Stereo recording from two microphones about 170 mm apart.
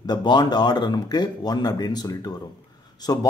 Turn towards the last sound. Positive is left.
turn(degrees=25)  # may be behind; listen again after turning